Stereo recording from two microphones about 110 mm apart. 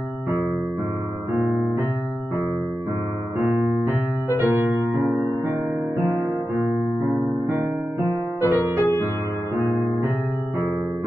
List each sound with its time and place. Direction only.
3.3 s electric piano: 20° right (ahead or behind)
4.4 s music: 20° right (ahead or behind)
7.4 s music: 25° right (ahead or behind)